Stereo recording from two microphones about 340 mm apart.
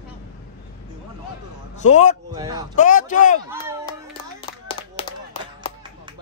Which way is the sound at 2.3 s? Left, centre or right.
Centre.